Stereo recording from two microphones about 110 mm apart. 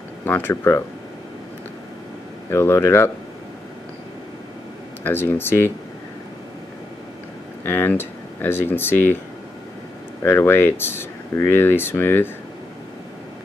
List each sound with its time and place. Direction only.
0.2 s speech: 20° left (ahead or behind)
2.5 s speech: 25° left (ahead or behind)
5.0 s speech: 20° left (ahead or behind)
7.6 s speech: 20° left (ahead or behind)
10.2 s speech: 25° left (ahead or behind)